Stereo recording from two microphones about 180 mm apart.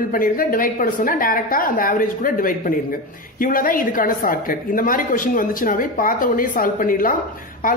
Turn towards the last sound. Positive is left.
turn(degrees=50)  # may be behind; listen again after turning